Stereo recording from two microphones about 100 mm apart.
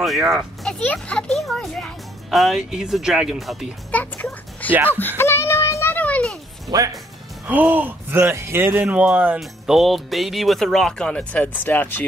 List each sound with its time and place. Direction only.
0.0 s a child's voice: centre (ahead or behind)
3.9 s speech: 15° left (ahead or behind)
4.9 s a sound: 20° left (ahead or behind)
6.7 s speech: 40° right (ahead or behind)
7.7 s speech: 20° right (ahead or behind)
8.8 s speech: 10° right (ahead or behind)
9.4 s speech: centre (ahead or behind); by 12.0 s 15° left (ahead or behind)